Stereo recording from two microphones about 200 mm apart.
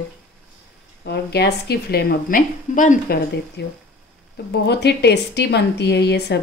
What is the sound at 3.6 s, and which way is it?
A woman's voice, 55° left (ahead or behind).